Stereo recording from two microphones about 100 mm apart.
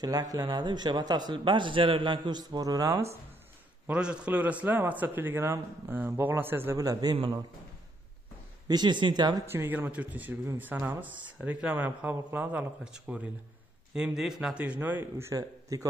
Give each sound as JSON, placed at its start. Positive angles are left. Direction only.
{"t": 0.0, "sound": "a man's voice", "side_deg": -40}
{"t": 3.8, "sound": "a man's voice", "side_deg": -10}
{"t": 6.8, "sound": "a man's voice", "side_deg": -40}
{"t": 8.6, "sound": "a man's voice", "side_deg": -45}
{"t": 9.5, "sound": "speech", "side_deg": -20}
{"t": 14.6, "sound": "a man's voice", "side_deg": -15}
{"t": 15.3, "sound": "a man's voice", "side_deg": -35}